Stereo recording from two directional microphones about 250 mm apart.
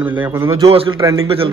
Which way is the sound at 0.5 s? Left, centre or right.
Right.